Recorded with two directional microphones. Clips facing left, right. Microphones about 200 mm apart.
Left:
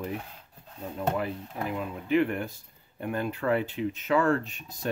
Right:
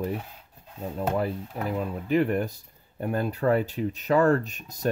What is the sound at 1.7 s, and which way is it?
Speech, 40° right (ahead or behind).